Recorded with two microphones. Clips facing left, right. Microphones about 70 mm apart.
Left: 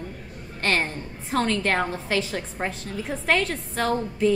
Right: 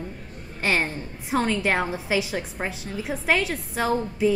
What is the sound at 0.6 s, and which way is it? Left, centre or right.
A woman's voice, centre.